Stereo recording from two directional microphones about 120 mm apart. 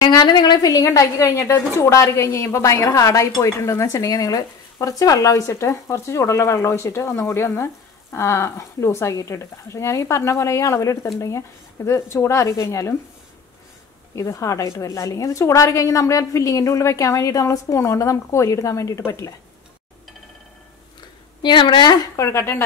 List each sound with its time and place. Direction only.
0.0 s a woman's voice: 35° left (ahead or behind)
14.1 s speech: 25° left (ahead or behind)
21.4 s a woman's voice: 40° left (ahead or behind)
22.1 s speech: 25° left (ahead or behind)